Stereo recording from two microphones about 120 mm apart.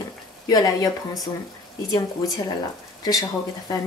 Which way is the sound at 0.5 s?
30° left (ahead or behind).